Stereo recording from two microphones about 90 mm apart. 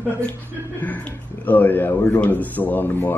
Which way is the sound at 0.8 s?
15° left (ahead or behind).